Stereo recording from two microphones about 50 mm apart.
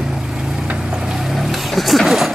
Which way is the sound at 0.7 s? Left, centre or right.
Centre.